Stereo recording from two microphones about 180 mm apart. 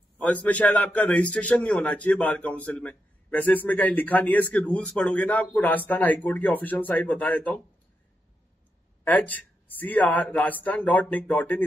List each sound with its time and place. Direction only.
0.2 s a man's voice: 10° left (ahead or behind)
9.0 s a man's voice: 10° left (ahead or behind)